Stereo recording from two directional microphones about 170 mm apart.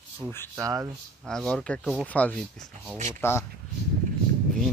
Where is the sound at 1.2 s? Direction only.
Centre (ahead or behind).